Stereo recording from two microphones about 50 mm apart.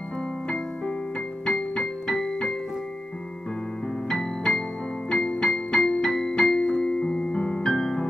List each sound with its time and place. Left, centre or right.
1.4 s music: centre
4.1 s music: centre
6.8 s keyboard: centre